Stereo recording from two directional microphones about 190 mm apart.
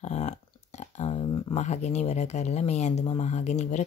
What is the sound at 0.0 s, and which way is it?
Speech, 35° left (ahead or behind).